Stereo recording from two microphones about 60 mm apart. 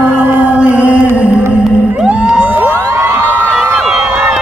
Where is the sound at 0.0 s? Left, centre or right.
Right.